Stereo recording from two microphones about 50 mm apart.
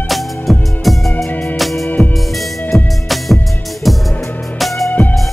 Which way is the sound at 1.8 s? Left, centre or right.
Left.